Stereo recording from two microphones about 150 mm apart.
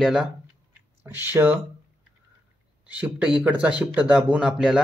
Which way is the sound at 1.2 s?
15° right (ahead or behind).